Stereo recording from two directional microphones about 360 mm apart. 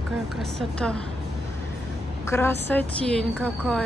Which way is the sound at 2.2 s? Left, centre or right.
Centre.